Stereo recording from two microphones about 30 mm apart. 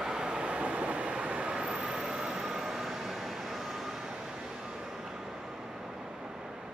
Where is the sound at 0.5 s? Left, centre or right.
Right.